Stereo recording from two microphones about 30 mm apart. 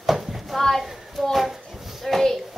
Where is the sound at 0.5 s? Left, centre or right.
Centre.